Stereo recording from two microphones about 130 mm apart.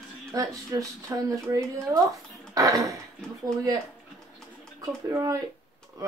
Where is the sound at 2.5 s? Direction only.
25° right (ahead or behind).